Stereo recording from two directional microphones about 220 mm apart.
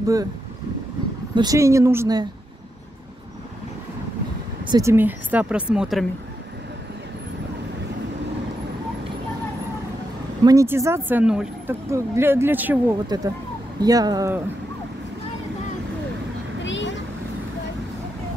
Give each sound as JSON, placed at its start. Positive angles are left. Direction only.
{"t": 0.0, "sound": "speech", "side_deg": -15}
{"t": 1.3, "sound": "speech", "side_deg": -15}
{"t": 4.6, "sound": "speech", "side_deg": -15}
{"t": 10.4, "sound": "speech", "side_deg": -15}
{"t": 16.6, "sound": "vehicle", "side_deg": 55}